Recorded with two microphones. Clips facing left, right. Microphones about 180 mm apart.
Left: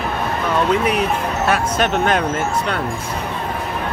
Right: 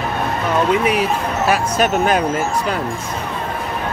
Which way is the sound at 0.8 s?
5° right (ahead or behind).